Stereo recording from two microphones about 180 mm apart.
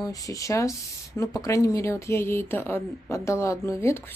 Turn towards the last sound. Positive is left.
turn(degrees=15)  # may be behind; listen again after turning